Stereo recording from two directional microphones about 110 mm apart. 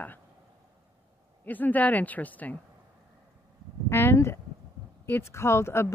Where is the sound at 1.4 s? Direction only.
15° left (ahead or behind).